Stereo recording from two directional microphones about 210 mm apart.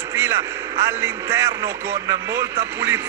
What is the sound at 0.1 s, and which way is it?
A man's voice, 15° right (ahead or behind).